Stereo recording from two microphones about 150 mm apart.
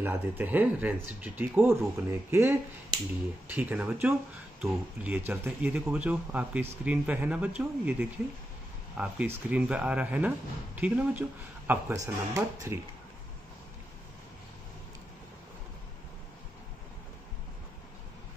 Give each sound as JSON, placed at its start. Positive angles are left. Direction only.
{"t": 0.0, "sound": "speech", "side_deg": -15}